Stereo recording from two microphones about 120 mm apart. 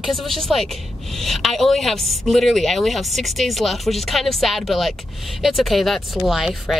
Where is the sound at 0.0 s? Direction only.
Centre (ahead or behind).